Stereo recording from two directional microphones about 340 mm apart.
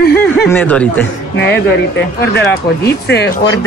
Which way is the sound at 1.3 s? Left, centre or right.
Left.